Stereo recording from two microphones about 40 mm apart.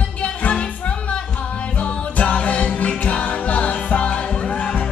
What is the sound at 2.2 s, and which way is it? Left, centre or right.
Music, left.